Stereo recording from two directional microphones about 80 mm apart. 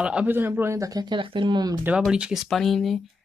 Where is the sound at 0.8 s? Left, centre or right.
Right.